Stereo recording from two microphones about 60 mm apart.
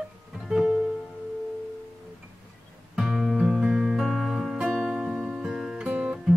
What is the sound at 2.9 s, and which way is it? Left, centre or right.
Music, centre.